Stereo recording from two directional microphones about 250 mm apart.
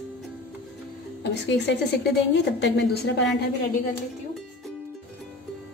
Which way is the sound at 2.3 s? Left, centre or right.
Left.